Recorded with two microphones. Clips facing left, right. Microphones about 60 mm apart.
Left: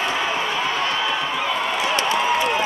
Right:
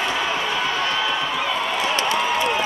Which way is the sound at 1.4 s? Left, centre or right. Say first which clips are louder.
Even; centre.